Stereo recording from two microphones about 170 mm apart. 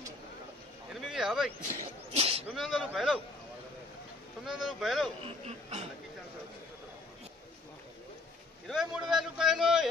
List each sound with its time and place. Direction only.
1.0 s a sound: centre (ahead or behind)
2.1 s a sound: 35° right (ahead or behind)
2.5 s speech: centre (ahead or behind)
4.5 s speech: centre (ahead or behind)
5.2 s speech: 40° right (ahead or behind)
8.6 s speech: centre (ahead or behind)